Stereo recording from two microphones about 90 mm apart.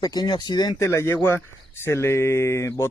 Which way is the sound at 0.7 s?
30° left (ahead or behind).